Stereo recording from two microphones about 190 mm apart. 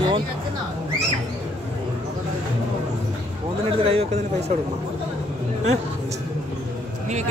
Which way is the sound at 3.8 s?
30° right (ahead or behind).